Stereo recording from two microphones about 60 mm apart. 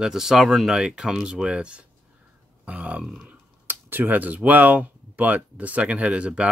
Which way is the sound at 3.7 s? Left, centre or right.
Right.